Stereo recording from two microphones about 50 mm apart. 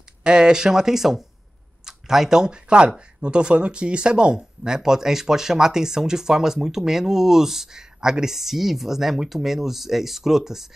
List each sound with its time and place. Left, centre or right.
0.2 s speech: centre